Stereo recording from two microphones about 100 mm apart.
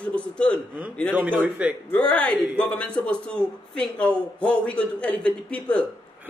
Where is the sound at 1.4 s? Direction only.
15° right (ahead or behind).